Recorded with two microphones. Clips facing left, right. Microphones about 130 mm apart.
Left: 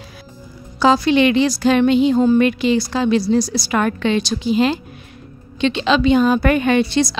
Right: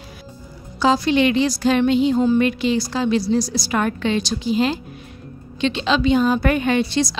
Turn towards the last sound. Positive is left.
turn(degrees=65)  # may be behind; listen again after turning